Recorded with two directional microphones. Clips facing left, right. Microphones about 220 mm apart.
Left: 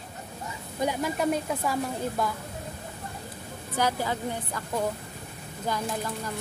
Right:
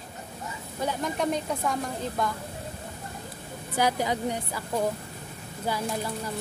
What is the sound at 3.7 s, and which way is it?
Speech, 15° right (ahead or behind).